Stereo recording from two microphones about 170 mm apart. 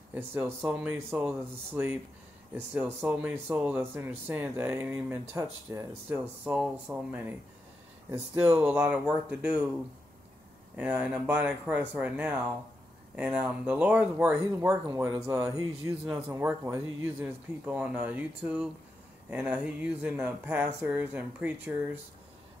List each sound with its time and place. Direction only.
0.1 s speech: 10° right (ahead or behind)
8.4 s speech: 10° right (ahead or behind)
10.8 s speech: 5° right (ahead or behind)
15.0 s speech: 20° right (ahead or behind)
16.1 s speech: 5° right (ahead or behind)